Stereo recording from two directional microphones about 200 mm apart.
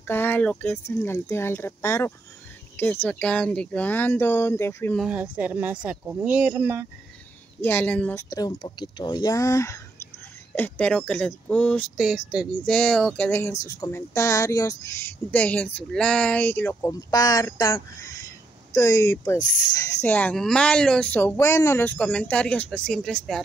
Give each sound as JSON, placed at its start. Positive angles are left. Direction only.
{"t": 0.0, "sound": "speech", "side_deg": 10}
{"t": 5.0, "sound": "speech", "side_deg": -5}
{"t": 7.6, "sound": "speech", "side_deg": 10}
{"t": 8.3, "sound": "speech", "side_deg": 20}
{"t": 13.3, "sound": "speech", "side_deg": 15}